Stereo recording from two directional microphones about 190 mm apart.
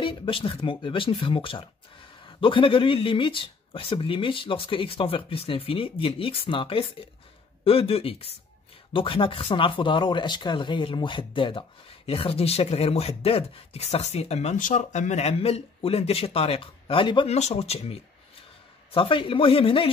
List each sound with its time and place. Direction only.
0.0 s speech: 25° left (ahead or behind)